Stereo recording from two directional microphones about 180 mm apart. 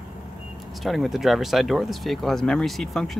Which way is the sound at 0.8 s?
Centre (ahead or behind).